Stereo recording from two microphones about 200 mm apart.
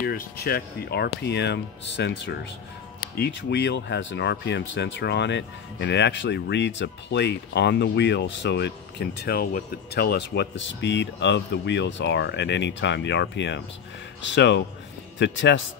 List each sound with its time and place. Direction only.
0.0 s speech: 50° left (ahead or behind)